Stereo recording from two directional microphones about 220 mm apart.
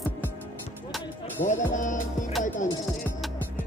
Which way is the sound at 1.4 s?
35° left (ahead or behind).